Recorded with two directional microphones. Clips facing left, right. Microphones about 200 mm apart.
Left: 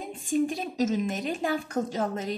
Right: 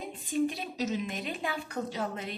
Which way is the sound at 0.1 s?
45° left (ahead or behind).